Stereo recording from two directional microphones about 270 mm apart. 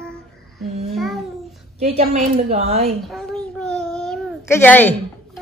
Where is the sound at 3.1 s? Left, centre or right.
Centre.